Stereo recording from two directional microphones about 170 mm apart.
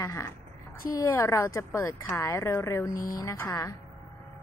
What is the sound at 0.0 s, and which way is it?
Speech, 20° left (ahead or behind).